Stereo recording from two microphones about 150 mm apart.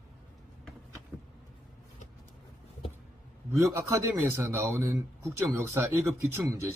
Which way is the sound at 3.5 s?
20° right (ahead or behind).